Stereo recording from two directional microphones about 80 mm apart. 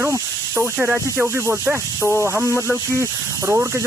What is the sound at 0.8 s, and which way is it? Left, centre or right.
Speech, centre.